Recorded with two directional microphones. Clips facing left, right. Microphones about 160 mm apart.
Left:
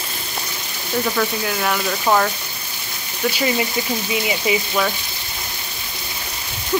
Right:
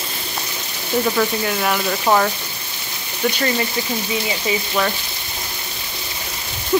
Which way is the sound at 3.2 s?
5° left (ahead or behind).